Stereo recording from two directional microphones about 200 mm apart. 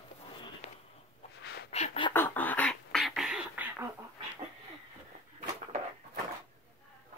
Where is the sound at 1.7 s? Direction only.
30° left (ahead or behind).